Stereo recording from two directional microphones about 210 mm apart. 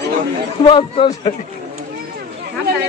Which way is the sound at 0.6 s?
25° left (ahead or behind).